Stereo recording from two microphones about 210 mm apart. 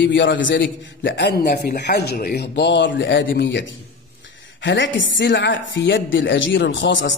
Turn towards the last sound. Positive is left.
turn(degrees=60)  # may be behind; listen again after turning